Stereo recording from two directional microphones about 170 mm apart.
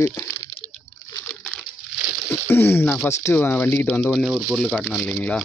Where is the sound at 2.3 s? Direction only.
15° left (ahead or behind).